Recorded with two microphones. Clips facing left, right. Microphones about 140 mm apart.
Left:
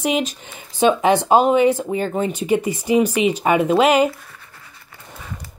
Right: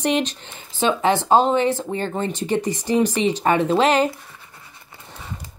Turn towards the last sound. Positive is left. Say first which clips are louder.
# even
turn(degrees=-20)  # may be behind; listen again after turning